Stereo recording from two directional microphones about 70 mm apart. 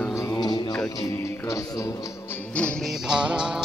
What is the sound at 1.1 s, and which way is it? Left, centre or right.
Music, left.